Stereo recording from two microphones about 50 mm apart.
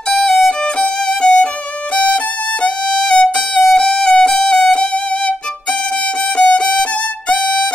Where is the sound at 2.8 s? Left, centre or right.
Centre.